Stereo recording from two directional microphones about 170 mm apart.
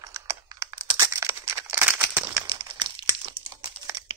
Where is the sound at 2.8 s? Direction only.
30° right (ahead or behind).